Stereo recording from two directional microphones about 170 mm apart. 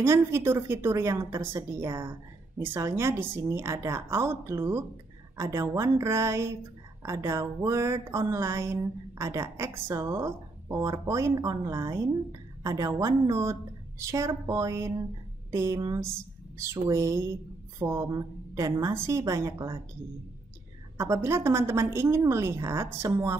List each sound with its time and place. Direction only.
0.0 s speech: 15° right (ahead or behind)
21.0 s speech: 15° right (ahead or behind)